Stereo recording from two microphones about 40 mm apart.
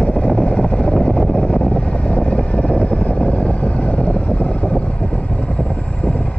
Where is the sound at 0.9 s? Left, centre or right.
Centre.